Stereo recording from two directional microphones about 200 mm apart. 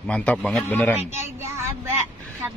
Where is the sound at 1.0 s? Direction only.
10° right (ahead or behind).